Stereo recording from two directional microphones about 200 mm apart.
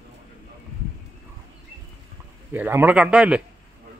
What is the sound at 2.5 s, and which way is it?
Speech, 10° right (ahead or behind).